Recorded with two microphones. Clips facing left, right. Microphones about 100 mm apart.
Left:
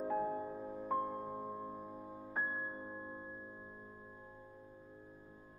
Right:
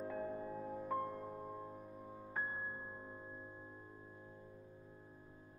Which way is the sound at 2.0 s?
20° left (ahead or behind).